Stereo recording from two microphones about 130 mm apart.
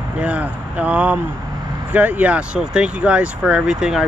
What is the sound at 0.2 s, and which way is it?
Speech, 10° right (ahead or behind).